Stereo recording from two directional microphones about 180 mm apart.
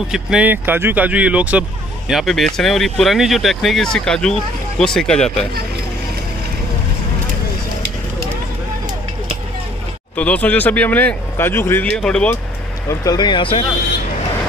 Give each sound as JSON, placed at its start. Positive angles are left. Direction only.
{"t": 0.1, "sound": "speech", "side_deg": -5}
{"t": 10.1, "sound": "speech", "side_deg": 5}
{"t": 13.0, "sound": "speech", "side_deg": 25}